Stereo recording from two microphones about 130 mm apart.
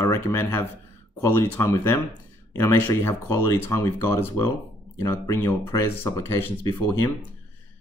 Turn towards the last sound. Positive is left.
turn(degrees=20)  # may be behind; listen again after turning